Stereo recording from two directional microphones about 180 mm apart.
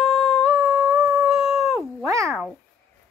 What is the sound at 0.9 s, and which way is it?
Howl, 15° right (ahead or behind).